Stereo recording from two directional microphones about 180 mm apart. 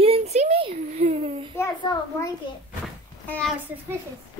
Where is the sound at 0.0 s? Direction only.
35° right (ahead or behind).